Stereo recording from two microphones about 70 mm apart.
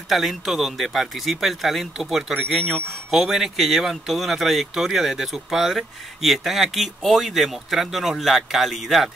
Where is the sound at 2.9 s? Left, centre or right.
Centre.